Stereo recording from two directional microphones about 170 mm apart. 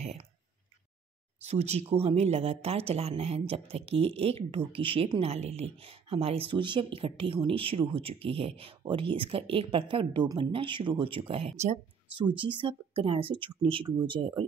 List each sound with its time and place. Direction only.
0.0 s speech: 40° right (ahead or behind)
1.4 s speech: 40° right (ahead or behind)